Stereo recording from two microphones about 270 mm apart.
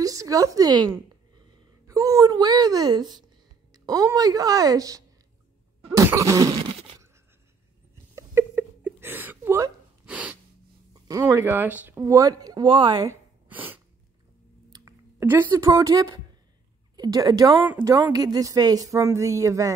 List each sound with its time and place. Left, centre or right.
0.0 s speech: centre
1.9 s a woman's voice: centre
5.9 s cough: centre
8.1 s a sound: centre
10.9 s a woman's voice: centre
13.5 s sneeze: centre
14.7 s a woman's voice: centre